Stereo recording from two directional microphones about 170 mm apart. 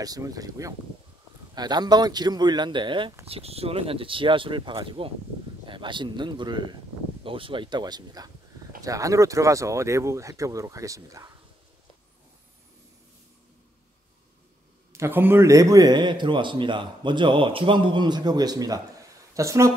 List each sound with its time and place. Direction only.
0.0 s a man's voice: 20° right (ahead or behind)
14.9 s a man's voice: 15° right (ahead or behind)